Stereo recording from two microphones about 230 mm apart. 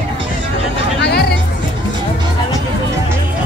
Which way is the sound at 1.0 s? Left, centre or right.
Left.